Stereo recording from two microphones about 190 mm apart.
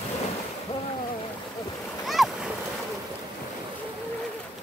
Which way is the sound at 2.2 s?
Centre (ahead or behind).